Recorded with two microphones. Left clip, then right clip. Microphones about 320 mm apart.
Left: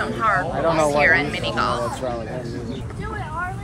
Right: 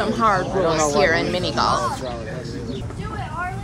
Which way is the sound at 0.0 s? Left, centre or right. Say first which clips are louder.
Right 2 dB; centre.